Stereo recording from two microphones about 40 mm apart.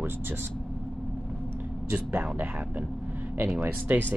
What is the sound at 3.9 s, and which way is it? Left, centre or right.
Speech, right.